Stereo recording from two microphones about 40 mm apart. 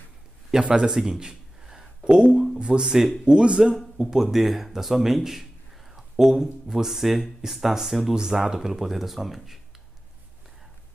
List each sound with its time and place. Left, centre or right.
0.5 s a sound: centre
2.0 s speech: right
4.0 s a man's voice: centre